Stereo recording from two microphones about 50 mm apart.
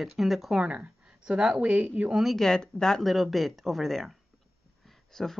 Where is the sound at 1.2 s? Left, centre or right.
Centre.